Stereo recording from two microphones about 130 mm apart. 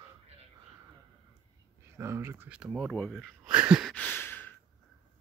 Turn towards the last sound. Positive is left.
turn(degrees=15)  # may be behind; listen again after turning